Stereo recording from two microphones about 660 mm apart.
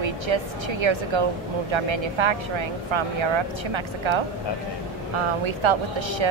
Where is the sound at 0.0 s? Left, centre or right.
Right.